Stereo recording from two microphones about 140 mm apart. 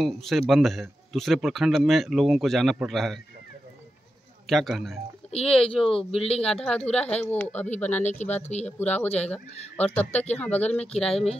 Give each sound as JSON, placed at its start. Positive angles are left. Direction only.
{"t": 0.0, "sound": "speech", "side_deg": 0}
{"t": 4.5, "sound": "speech", "side_deg": 0}
{"t": 5.9, "sound": "a man's voice", "side_deg": 40}
{"t": 6.4, "sound": "speech", "side_deg": 5}
{"t": 8.5, "sound": "a man's voice", "side_deg": 50}
{"t": 8.7, "sound": "speech", "side_deg": 10}